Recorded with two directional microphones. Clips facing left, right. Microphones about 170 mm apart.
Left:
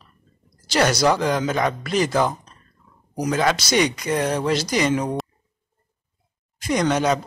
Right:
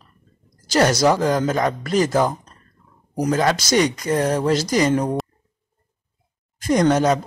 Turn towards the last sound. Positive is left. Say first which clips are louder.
# right 4 dB
turn(degrees=-45)  # may be behind; listen again after turning